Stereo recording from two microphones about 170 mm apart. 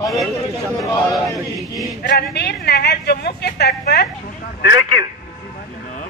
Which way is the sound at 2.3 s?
75° left (ahead or behind).